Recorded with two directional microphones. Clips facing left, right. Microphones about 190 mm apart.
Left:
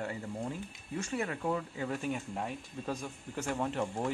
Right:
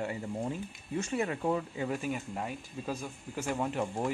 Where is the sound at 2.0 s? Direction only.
Centre (ahead or behind).